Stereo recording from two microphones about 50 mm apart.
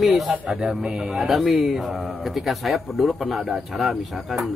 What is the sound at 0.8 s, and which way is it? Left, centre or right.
Speech, right.